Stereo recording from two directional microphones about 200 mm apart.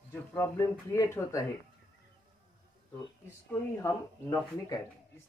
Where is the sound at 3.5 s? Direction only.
10° left (ahead or behind).